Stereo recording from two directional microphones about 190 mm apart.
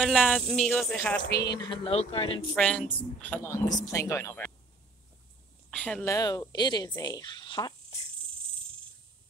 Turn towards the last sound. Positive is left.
turn(degrees=20)  # may be behind; listen again after turning